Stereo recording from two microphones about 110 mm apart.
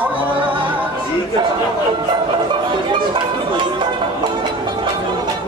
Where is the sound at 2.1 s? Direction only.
45° right (ahead or behind).